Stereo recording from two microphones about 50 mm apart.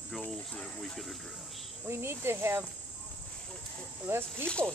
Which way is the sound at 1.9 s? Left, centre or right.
Right.